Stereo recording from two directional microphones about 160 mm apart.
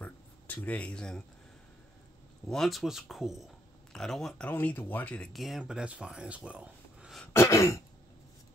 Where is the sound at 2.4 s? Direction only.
Centre (ahead or behind).